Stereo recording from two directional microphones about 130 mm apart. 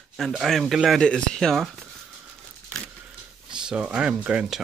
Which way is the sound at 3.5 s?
5° right (ahead or behind).